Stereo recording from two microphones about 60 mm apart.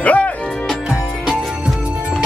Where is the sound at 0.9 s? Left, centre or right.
Centre.